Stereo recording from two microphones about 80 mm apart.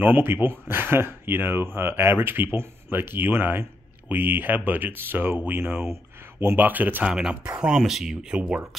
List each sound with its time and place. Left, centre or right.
0.0 s speech: right
7.1 s speech: centre